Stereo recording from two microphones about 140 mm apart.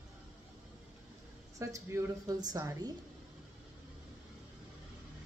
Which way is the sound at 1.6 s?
20° right (ahead or behind).